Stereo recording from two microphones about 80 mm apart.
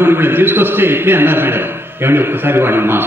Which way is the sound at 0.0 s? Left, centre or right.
Right.